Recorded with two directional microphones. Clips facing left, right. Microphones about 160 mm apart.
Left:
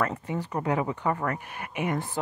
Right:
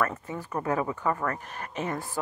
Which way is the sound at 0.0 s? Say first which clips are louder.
Left 1 dB; 25° left (ahead or behind).